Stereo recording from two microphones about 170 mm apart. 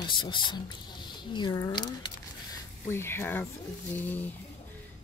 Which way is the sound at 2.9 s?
15° left (ahead or behind).